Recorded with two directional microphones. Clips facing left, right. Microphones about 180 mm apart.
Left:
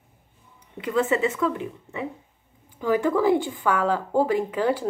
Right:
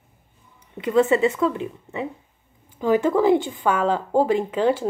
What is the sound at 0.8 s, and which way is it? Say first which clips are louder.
Speech: right 5 dB; 25° right (ahead or behind).